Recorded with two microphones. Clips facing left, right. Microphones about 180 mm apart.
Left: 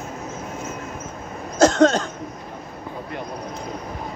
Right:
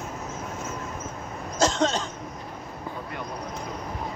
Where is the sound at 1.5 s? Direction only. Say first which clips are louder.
Left 8 dB; 45° left (ahead or behind).